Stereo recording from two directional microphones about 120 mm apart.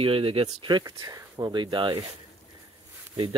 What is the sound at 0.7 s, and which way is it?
Speech, 35° right (ahead or behind).